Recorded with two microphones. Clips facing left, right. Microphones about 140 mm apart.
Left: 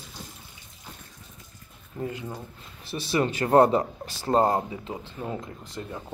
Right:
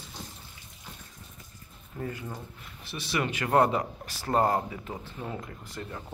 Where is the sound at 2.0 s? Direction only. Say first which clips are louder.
Left 3 dB; 20° left (ahead or behind).